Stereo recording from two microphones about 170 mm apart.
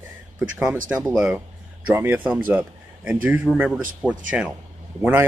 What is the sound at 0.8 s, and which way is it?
Speech, 15° right (ahead or behind).